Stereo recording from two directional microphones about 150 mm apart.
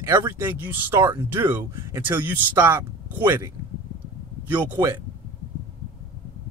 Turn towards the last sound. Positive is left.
turn(degrees=-15)  # may be behind; listen again after turning